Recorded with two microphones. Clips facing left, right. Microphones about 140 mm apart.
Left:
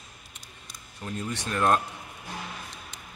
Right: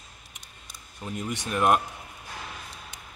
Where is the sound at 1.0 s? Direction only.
15° right (ahead or behind).